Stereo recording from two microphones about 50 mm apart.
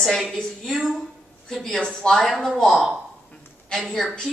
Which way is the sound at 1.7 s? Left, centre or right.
Centre.